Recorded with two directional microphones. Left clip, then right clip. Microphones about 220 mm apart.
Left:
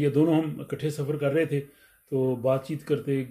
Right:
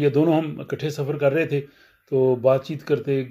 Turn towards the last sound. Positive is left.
turn(degrees=-10)  # may be behind; listen again after turning